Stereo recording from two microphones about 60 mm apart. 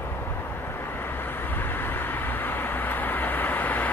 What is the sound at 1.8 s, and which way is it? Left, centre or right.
Vehicle, left.